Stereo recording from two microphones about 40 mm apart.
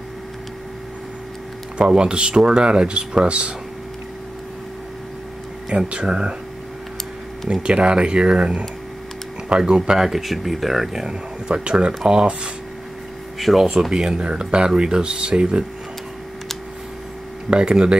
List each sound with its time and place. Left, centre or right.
1.8 s speech: right
5.9 s speech: right
7.6 s speech: right
13.4 s speech: centre
13.7 s speech: centre
14.1 s speech: right
17.5 s speech: right